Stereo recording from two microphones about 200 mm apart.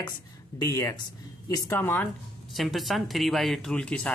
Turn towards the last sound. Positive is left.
turn(degrees=5)  # may be behind; listen again after turning